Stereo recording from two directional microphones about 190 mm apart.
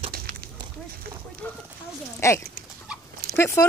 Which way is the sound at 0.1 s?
50° right (ahead or behind).